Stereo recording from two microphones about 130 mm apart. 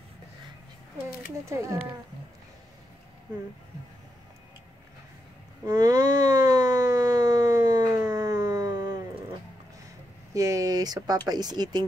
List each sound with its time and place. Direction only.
1.4 s speech: 20° right (ahead or behind)
5.7 s a sound: 30° right (ahead or behind)
10.3 s speech: 25° right (ahead or behind)